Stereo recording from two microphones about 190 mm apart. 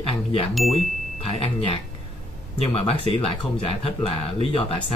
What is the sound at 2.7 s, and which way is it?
Speech, 30° left (ahead or behind).